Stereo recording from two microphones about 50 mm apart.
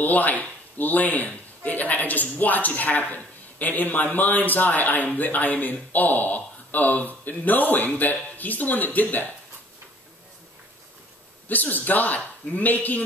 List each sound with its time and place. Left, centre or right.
0.0 s speech: left
11.4 s speech: left